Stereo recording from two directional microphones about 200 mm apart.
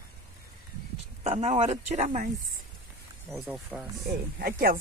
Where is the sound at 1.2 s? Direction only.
35° right (ahead or behind).